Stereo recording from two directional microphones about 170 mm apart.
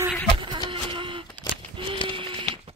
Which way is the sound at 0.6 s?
30° right (ahead or behind).